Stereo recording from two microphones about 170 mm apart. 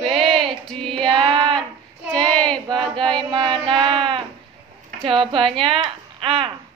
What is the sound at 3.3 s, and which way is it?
Child singing, 30° right (ahead or behind).